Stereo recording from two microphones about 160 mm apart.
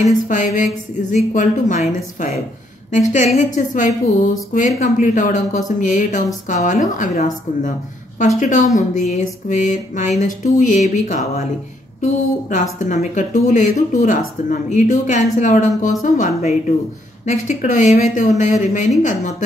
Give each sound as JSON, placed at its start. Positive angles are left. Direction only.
{"t": 0.0, "sound": "a woman's voice", "side_deg": 50}